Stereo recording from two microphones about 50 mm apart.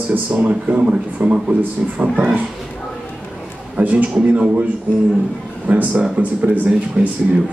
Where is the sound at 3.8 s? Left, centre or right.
Right.